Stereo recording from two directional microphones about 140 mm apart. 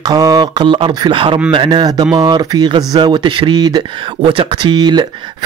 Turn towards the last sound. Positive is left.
turn(degrees=-30)  # may be behind; listen again after turning